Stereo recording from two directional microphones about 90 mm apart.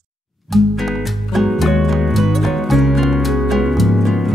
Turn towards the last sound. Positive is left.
turn(degrees=0)  # may be behind; listen again after turning